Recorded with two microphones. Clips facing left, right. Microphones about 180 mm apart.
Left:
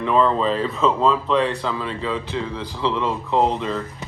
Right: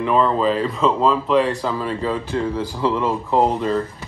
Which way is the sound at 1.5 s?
40° right (ahead or behind).